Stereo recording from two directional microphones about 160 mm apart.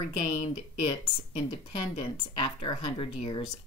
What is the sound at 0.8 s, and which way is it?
Speech, 30° left (ahead or behind).